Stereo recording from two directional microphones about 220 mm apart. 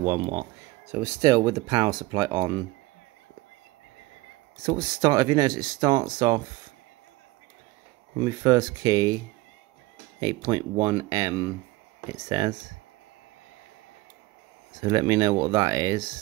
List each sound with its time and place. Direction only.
0.9 s speech: 15° right (ahead or behind)
4.6 s speech: 20° right (ahead or behind)
8.2 s speech: 15° right (ahead or behind)
10.2 s speech: 15° right (ahead or behind)
14.8 s speech: 15° right (ahead or behind)